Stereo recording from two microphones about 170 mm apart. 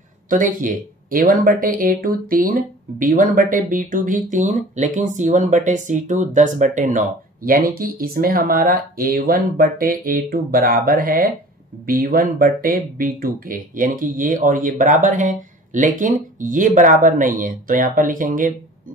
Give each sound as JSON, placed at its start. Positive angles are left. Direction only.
{"t": 0.3, "sound": "speech", "side_deg": -50}